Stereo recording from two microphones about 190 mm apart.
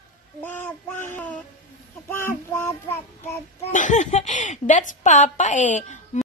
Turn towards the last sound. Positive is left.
turn(degrees=40)  # may be behind; listen again after turning